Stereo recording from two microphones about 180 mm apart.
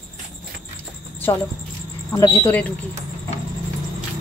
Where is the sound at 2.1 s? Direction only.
20° left (ahead or behind).